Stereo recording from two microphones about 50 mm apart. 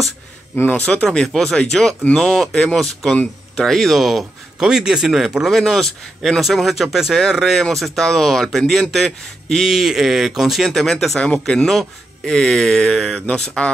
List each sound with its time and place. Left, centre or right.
0.8 s speech: centre
4.6 s a man's voice: centre
9.7 s speech: centre
13.6 s speech: left